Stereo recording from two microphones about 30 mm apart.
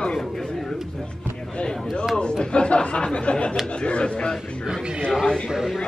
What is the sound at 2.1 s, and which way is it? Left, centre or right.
A man's voice, left.